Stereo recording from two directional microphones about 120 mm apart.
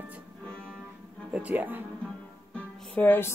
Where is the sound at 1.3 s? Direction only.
15° right (ahead or behind).